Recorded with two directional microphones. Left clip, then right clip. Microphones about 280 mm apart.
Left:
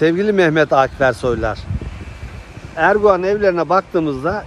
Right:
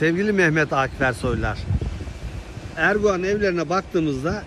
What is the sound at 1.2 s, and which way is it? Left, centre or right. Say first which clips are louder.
Speech: left 7 dB; left.